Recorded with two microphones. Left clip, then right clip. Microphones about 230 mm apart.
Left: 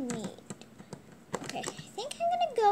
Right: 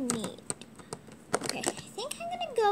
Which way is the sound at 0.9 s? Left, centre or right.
Right.